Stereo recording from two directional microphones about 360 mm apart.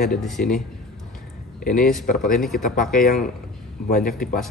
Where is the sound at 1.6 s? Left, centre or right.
Left.